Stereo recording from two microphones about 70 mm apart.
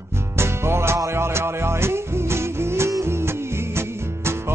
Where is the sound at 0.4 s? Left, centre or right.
Right.